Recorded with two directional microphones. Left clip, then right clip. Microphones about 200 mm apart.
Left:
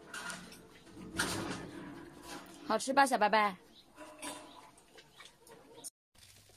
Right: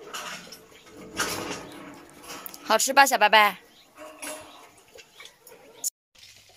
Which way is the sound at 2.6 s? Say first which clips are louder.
Right 10 dB; centre (ahead or behind).